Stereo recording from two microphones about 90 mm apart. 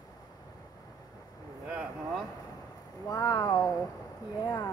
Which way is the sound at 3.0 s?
50° left (ahead or behind).